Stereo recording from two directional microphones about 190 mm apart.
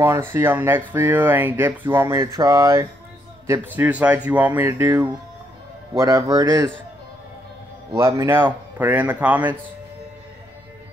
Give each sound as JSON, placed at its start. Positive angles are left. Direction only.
{"t": 0.0, "sound": "speech", "side_deg": -15}
{"t": 7.9, "sound": "speech", "side_deg": -15}